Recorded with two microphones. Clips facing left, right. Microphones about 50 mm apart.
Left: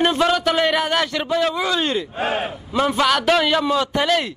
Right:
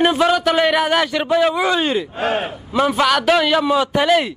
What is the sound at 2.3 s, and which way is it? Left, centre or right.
A man's voice, centre.